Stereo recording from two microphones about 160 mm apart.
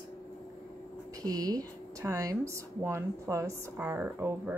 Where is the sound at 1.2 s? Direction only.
25° right (ahead or behind).